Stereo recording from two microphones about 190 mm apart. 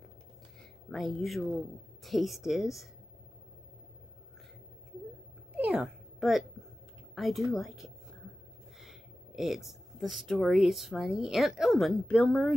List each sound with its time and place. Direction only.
0.9 s a woman's voice: centre (ahead or behind)
5.6 s a sound: 5° right (ahead or behind)
7.2 s a woman's voice: centre (ahead or behind)